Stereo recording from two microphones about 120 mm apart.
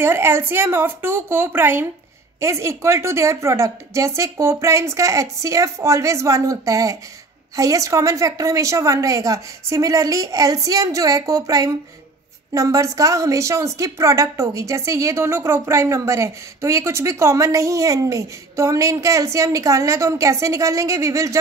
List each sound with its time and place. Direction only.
0.0 s a woman's voice: 20° right (ahead or behind)